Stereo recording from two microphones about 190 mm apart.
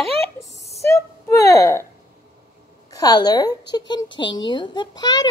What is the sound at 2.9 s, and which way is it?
A child's voice, 20° left (ahead or behind).